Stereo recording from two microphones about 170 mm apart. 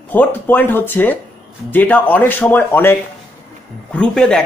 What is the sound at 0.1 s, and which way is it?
Speech, 10° left (ahead or behind).